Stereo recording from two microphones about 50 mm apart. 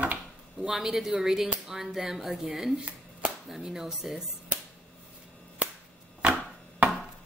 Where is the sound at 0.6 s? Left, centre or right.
Centre.